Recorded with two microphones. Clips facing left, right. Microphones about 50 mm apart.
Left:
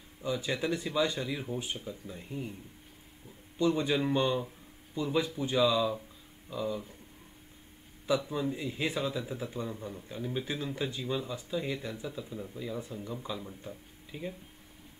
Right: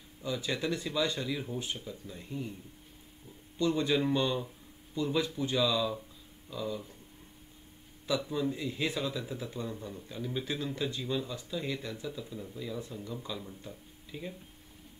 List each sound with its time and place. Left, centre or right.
0.2 s speech: centre
3.5 s a man's voice: left
8.3 s speech: centre